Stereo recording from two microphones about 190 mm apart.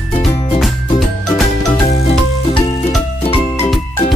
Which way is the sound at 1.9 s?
35° left (ahead or behind).